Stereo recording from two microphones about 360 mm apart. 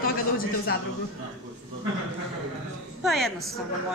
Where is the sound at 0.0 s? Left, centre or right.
Left.